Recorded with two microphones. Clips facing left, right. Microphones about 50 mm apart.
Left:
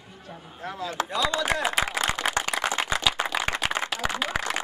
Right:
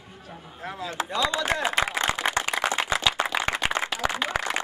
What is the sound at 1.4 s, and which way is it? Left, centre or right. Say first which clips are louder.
Clapping: even; centre.